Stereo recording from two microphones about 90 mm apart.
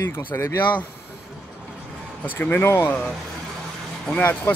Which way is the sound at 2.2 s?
20° left (ahead or behind).